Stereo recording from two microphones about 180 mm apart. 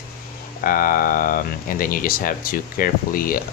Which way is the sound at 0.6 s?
50° left (ahead or behind).